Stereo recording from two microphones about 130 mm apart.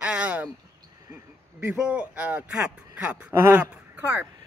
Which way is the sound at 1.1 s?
20° right (ahead or behind).